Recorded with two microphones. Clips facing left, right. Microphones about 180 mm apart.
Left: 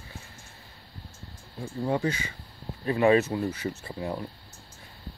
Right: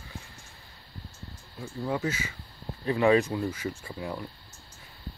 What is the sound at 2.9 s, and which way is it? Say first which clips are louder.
Speech: left 1 dB; 15° left (ahead or behind).